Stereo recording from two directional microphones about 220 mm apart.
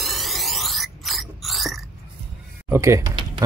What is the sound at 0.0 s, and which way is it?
Music, centre (ahead or behind).